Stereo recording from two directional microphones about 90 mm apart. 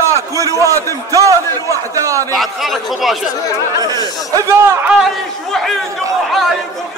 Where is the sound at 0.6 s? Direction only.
40° right (ahead or behind).